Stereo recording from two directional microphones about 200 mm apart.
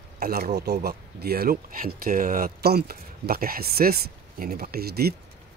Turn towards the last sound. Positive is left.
turn(degrees=-50)  # may be behind; listen again after turning